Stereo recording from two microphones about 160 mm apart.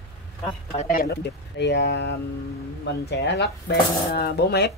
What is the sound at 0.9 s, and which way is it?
Speech, 80° left.